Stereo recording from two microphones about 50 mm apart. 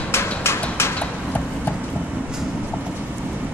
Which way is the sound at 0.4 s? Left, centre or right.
Left.